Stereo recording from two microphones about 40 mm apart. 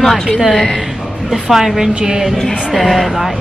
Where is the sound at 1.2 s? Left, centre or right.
Centre.